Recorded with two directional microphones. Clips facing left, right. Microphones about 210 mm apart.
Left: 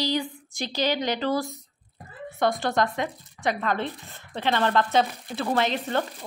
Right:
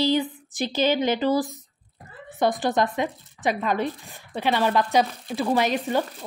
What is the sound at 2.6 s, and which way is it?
A woman's voice, 20° right (ahead or behind).